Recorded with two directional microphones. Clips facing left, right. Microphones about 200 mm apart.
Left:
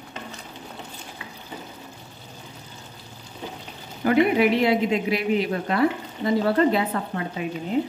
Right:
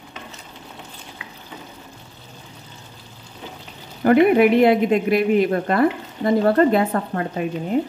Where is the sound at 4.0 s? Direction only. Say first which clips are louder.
Right 5 dB; 50° right (ahead or behind).